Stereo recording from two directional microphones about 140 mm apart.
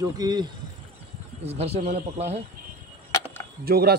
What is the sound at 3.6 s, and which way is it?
Speech, 90° right.